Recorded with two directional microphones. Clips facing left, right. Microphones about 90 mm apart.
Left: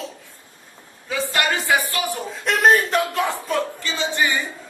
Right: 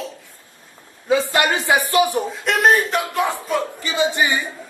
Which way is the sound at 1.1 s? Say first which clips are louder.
Right 5 dB; 20° right (ahead or behind).